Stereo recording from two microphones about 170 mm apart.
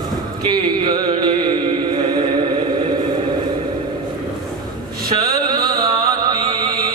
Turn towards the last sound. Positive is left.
turn(degrees=-20)  # may be behind; listen again after turning